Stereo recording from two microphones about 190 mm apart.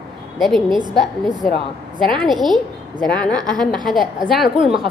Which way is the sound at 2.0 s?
25° right (ahead or behind).